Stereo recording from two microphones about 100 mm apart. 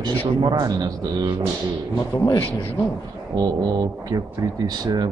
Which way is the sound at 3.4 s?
40° right (ahead or behind).